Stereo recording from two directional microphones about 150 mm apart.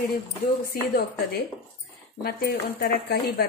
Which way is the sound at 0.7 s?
90° left.